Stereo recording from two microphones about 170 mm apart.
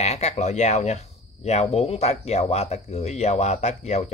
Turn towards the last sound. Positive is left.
turn(degrees=40)  # may be behind; listen again after turning